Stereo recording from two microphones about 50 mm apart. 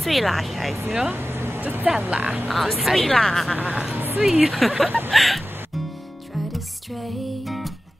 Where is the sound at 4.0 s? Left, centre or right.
Right.